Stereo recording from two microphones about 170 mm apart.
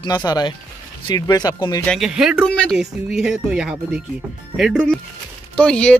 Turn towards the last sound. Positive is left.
turn(degrees=5)  # may be behind; listen again after turning